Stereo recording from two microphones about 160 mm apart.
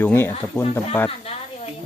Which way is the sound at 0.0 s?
15° left (ahead or behind).